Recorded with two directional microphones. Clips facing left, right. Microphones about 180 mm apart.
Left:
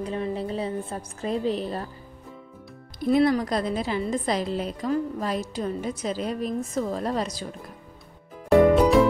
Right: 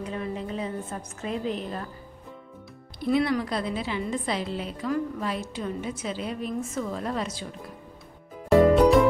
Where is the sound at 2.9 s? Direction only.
45° left (ahead or behind).